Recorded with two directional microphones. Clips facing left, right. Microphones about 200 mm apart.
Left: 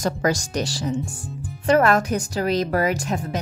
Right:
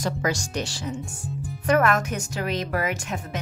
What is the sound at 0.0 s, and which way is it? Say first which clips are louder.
A woman's voice: left 4 dB; 40° left (ahead or behind).